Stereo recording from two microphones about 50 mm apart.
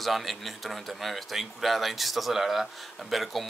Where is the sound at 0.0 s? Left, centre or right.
Centre.